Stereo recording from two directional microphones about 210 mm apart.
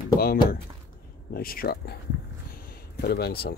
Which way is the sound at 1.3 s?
45° left (ahead or behind).